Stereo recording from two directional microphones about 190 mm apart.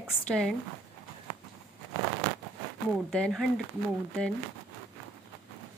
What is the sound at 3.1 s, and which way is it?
Speech, centre (ahead or behind).